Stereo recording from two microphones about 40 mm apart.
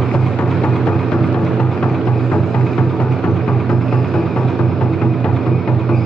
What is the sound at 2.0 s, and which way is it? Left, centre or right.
Music, centre.